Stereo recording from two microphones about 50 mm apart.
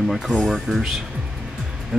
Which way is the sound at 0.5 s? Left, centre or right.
Centre.